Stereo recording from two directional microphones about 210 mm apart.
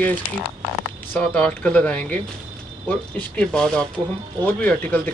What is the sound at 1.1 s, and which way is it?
Speech, 5° left (ahead or behind).